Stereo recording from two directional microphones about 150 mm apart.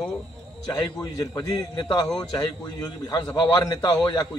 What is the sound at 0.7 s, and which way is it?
A man's voice, 25° left (ahead or behind).